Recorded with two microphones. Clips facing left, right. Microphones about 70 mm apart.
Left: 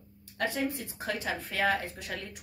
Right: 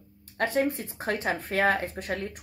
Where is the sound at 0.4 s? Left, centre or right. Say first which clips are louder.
Right 5 dB; right.